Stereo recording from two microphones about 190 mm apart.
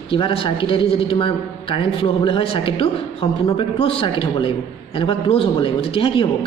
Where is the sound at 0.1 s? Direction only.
30° left (ahead or behind).